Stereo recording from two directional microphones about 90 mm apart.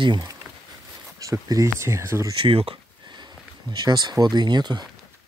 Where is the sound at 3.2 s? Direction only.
55° right (ahead or behind).